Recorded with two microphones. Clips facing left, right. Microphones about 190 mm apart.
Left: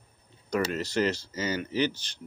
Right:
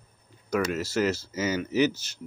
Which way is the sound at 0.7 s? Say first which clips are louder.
Right 1 dB; 5° right (ahead or behind).